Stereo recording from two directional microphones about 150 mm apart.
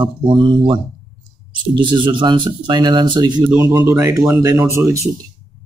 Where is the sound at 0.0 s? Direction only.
35° right (ahead or behind).